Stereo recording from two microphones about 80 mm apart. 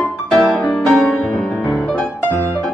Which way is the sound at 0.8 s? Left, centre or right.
Left.